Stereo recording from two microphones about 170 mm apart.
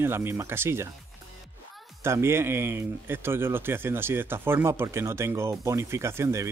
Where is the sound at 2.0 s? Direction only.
15° right (ahead or behind).